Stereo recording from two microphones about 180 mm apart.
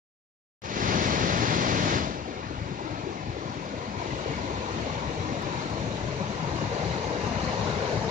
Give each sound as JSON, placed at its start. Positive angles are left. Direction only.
{"t": 0.7, "sound": "waves", "side_deg": -50}